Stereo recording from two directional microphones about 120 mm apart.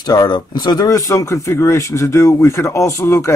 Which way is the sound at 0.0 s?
35° left (ahead or behind).